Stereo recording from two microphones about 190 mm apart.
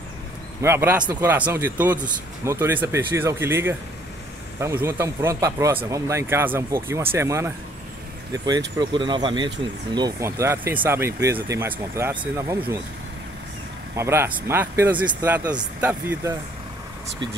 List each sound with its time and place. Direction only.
0.6 s speech: 15° right (ahead or behind)
13.9 s speech: 15° right (ahead or behind)